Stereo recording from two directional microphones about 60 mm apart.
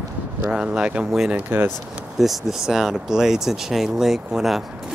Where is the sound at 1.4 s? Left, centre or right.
Right.